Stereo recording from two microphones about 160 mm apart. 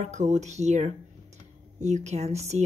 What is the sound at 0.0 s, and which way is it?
Speech, 45° right (ahead or behind).